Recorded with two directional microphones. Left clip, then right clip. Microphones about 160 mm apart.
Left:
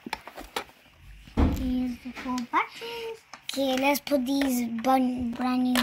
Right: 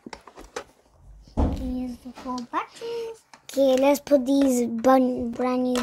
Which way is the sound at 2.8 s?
65° right (ahead or behind).